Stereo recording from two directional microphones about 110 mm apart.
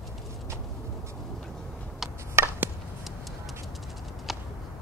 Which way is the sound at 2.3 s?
20° right (ahead or behind).